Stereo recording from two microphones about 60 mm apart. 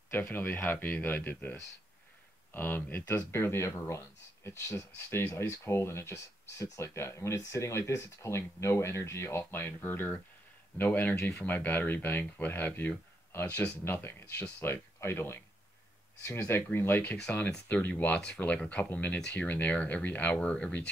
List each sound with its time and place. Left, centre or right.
0.1 s speech: left
11.1 s speech: left
11.4 s speech: left
19.1 s speech: centre
19.4 s speech: left